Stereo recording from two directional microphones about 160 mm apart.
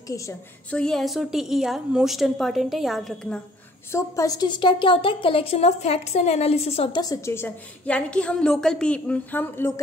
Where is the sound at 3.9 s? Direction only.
20° left (ahead or behind); by 6.9 s 40° left (ahead or behind).